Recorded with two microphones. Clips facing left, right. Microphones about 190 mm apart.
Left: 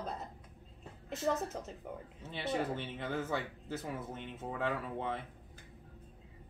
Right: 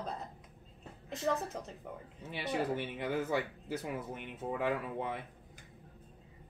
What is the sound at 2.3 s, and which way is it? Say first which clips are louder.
Speech: right 1 dB; 10° right (ahead or behind).